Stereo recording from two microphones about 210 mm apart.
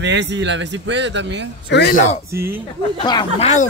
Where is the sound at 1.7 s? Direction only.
55° left (ahead or behind).